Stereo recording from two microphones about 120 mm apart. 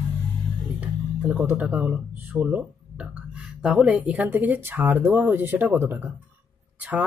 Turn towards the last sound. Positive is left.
turn(degrees=-10)  # may be behind; listen again after turning